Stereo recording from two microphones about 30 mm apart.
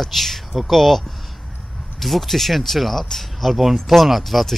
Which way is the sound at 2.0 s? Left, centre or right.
Centre.